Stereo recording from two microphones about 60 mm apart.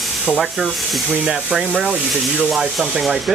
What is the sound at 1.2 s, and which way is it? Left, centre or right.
Speech, centre.